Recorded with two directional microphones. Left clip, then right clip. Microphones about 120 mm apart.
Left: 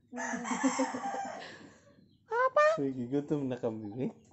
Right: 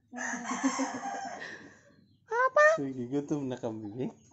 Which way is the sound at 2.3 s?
20° right (ahead or behind).